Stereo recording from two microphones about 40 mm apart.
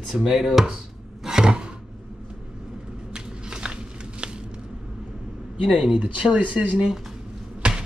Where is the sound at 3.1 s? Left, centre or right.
Right.